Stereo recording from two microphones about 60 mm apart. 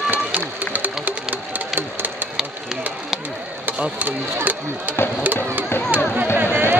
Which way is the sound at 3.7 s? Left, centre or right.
Right.